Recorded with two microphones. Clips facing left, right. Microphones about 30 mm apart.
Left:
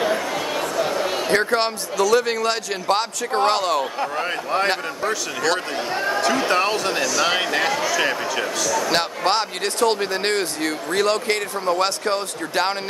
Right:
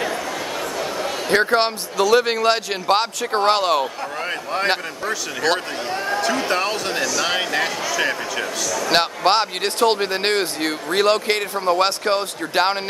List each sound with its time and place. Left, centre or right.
0.0 s a sound: centre
1.3 s speech: centre
4.2 s speech: centre
5.9 s speech: centre
8.9 s speech: right